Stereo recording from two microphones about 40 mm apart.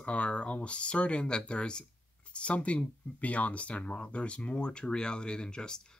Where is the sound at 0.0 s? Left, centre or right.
Left.